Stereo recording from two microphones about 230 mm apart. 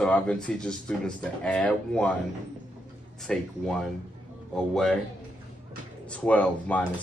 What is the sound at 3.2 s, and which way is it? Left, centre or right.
Speech, centre.